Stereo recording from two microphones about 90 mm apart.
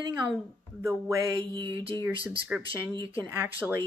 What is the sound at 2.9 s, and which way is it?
Speech, 40° left (ahead or behind).